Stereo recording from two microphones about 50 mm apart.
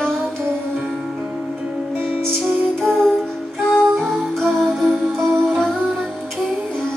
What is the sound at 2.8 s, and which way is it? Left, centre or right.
Music, centre.